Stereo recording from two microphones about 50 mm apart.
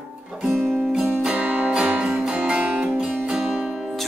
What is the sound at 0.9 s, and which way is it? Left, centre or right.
Music, centre.